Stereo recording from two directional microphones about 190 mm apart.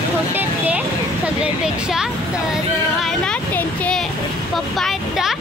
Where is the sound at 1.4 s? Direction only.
5° right (ahead or behind).